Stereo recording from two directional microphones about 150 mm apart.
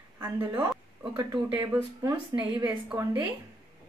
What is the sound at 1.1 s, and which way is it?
Speech, 30° right (ahead or behind).